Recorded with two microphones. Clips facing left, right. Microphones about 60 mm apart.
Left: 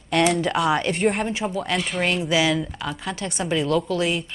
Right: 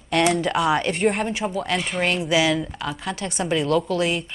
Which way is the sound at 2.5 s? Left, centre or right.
Centre.